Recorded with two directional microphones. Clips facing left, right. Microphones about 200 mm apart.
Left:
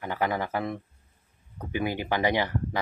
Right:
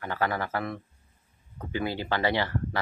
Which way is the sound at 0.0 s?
15° left (ahead or behind).